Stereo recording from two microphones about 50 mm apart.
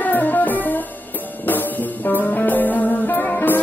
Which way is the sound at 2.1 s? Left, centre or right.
Left.